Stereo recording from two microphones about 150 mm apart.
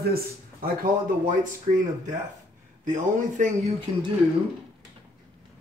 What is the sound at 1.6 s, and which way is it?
Speech, 55° right (ahead or behind).